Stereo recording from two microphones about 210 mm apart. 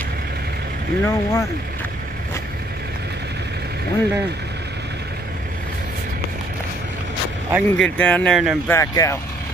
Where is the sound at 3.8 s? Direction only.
50° right (ahead or behind).